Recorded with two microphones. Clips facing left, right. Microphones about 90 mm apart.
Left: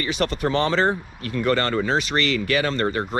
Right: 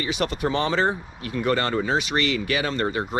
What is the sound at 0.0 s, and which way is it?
Speech, 40° left (ahead or behind).